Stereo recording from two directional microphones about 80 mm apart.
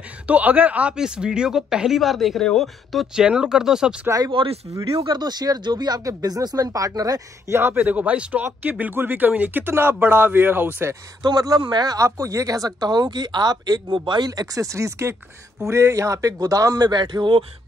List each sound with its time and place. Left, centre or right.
0.3 s speech: centre
4.1 s speech: right
4.6 s speech: right
7.5 s speech: right
11.2 s speech: right
12.0 s speech: right
13.9 s speech: right